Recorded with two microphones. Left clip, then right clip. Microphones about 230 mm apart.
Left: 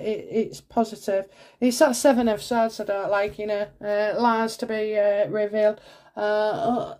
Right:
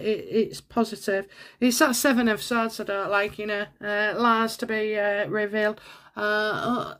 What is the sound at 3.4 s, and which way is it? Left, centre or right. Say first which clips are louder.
Speech: left 2 dB; right.